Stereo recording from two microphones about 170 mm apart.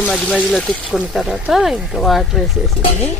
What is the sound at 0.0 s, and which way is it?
Speech, 5° left (ahead or behind).